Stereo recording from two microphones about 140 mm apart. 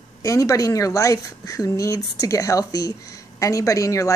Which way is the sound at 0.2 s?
25° left (ahead or behind).